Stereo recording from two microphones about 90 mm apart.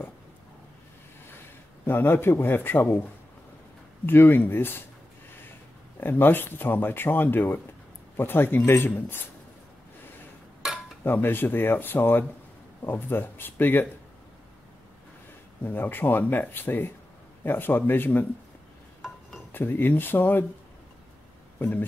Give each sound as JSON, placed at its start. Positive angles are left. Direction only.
{"t": 1.9, "sound": "speech", "side_deg": 25}
{"t": 5.9, "sound": "speech", "side_deg": 25}
{"t": 11.1, "sound": "speech", "side_deg": 25}
{"t": 15.6, "sound": "speech", "side_deg": 20}
{"t": 18.9, "sound": "glass", "side_deg": 0}
{"t": 19.5, "sound": "speech", "side_deg": 25}
{"t": 21.5, "sound": "speech", "side_deg": 20}